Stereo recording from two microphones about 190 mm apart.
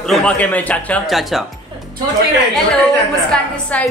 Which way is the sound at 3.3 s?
5° left (ahead or behind).